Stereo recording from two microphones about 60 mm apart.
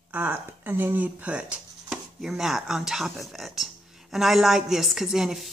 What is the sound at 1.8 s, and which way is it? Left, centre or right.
Speech, centre.